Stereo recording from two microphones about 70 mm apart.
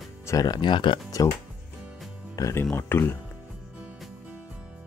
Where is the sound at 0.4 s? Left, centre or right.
Left.